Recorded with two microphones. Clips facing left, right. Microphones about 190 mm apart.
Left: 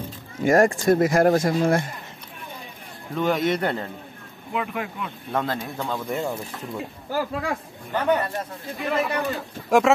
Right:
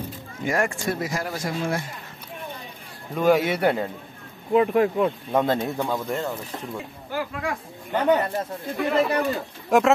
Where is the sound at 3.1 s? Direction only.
10° right (ahead or behind).